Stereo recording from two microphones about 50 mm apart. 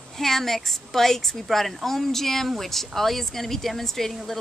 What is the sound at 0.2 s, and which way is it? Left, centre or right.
A woman's voice, centre.